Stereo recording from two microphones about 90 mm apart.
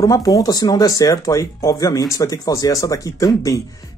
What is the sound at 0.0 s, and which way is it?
Speech, 40° left (ahead or behind).